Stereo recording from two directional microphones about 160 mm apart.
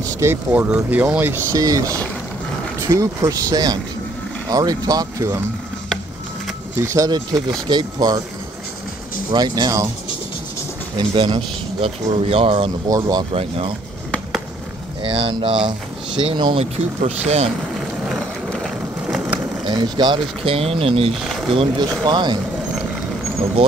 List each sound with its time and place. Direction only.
0.2 s speech: 15° right (ahead or behind)
6.8 s speech: 20° right (ahead or behind)
9.3 s speech: 25° right (ahead or behind)
11.0 s a man's voice: 30° right (ahead or behind)
12.8 s speech: 25° right (ahead or behind)
13.3 s a man's voice: 35° right (ahead or behind)
15.0 s a man's voice: 30° right (ahead or behind)
17.7 s vehicle: centre (ahead or behind)
19.6 s a man's voice: 25° right (ahead or behind)
21.2 s a sound: centre (ahead or behind)
21.5 s a man's voice: 35° right (ahead or behind)